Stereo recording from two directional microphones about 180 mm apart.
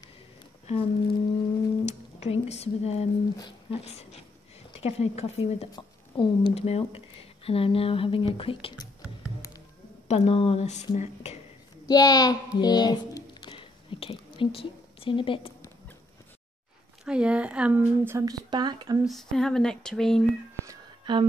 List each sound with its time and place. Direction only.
0.7 s speech: 30° left (ahead or behind)
1.9 s music: 40° left (ahead or behind)
2.4 s speech: 35° left (ahead or behind)
5.7 s speech: 25° left (ahead or behind)
10.0 s speech: 35° left (ahead or behind)
11.9 s speech: 20° left (ahead or behind)
17.0 s a woman's voice: 5° right (ahead or behind); by 18.9 s 25° right (ahead or behind)
19.0 s speech: centre (ahead or behind)
20.6 s a sound: 25° right (ahead or behind)